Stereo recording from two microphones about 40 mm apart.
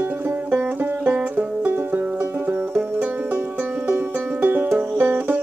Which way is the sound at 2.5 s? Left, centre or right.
Right.